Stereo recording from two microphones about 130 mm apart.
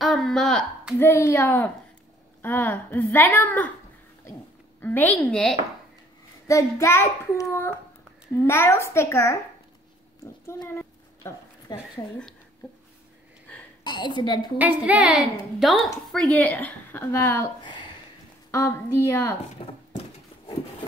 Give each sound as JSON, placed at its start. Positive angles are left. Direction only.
{"t": 0.0, "sound": "a sound", "side_deg": 0}
{"t": 0.9, "sound": "child singing", "side_deg": 20}
{"t": 2.4, "sound": "a woman's voice", "side_deg": 15}
{"t": 4.8, "sound": "a woman's voice", "side_deg": 15}
{"t": 6.4, "sound": "child singing", "side_deg": 25}
{"t": 10.4, "sound": "a woman's voice", "side_deg": 20}
{"t": 13.8, "sound": "a woman's voice", "side_deg": 35}
{"t": 14.6, "sound": "a woman's voice", "side_deg": -10}
{"t": 18.5, "sound": "child singing", "side_deg": 25}
{"t": 19.6, "sound": "a woman's voice", "side_deg": 40}